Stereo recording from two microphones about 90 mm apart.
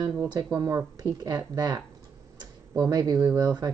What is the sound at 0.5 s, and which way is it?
Speech, 35° right (ahead or behind).